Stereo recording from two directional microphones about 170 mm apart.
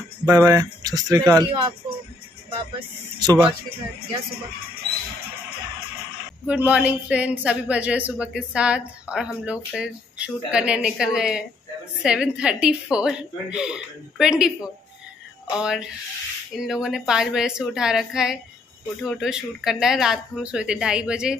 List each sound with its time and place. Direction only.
0.2 s speech: 20° right (ahead or behind)
3.2 s speech: 25° right (ahead or behind)
6.4 s a woman's voice: 10° right (ahead or behind)
15.5 s a woman's voice: 5° right (ahead or behind)